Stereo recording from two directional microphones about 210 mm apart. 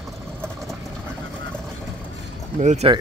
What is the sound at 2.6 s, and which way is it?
Speech, 35° right (ahead or behind).